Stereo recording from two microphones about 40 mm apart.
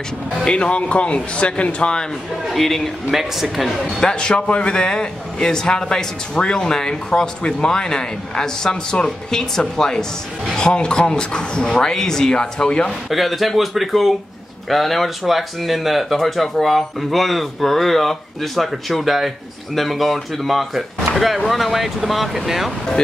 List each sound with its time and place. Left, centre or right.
0.5 s speech: left
2.4 s a man's voice: centre
3.1 s speech: centre
4.0 s a man's voice: left
13.1 s speech: centre